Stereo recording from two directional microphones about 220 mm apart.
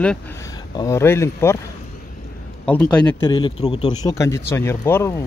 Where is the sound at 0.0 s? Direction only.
5° left (ahead or behind).